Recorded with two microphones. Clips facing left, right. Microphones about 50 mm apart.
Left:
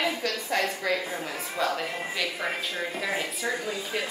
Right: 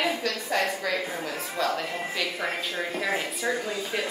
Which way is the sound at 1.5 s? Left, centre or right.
Centre.